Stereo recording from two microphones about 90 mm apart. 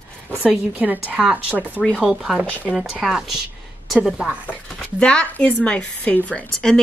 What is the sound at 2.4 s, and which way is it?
Speech, 15° left (ahead or behind).